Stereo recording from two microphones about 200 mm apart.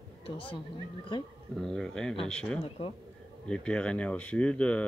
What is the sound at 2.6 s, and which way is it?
Speech, 30° left (ahead or behind).